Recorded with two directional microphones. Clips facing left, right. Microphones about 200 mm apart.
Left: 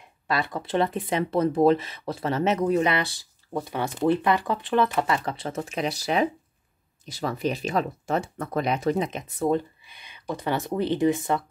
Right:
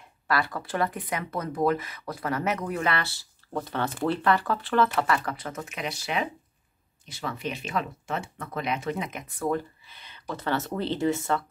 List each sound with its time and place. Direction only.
0.3 s speech: 20° left (ahead or behind)